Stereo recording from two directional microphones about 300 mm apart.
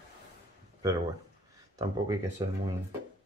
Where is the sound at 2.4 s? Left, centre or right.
Centre.